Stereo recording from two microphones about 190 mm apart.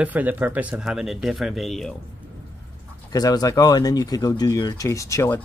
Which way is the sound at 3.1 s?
20° left (ahead or behind).